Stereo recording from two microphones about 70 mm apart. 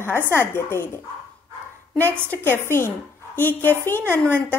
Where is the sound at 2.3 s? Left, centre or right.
Left.